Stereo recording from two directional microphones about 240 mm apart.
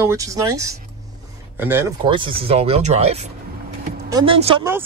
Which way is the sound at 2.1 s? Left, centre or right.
Right.